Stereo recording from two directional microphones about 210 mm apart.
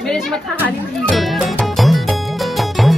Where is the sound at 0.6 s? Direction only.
5° left (ahead or behind).